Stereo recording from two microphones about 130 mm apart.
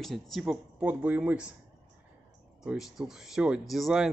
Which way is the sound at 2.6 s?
5° right (ahead or behind).